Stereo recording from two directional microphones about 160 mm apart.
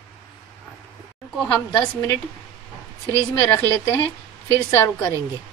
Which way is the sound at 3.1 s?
15° left (ahead or behind).